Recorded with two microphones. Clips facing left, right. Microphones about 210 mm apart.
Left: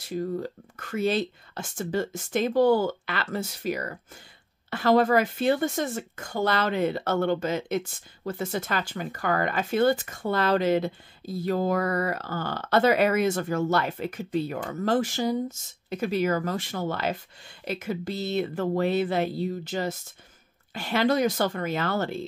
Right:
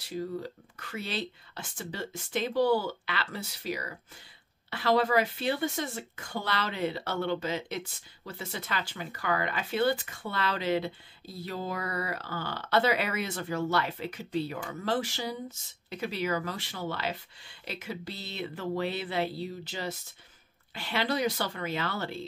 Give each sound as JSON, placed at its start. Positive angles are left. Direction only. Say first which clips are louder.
{"t": 0.1, "sound": "speech", "louder": "left 5 dB", "side_deg": 50}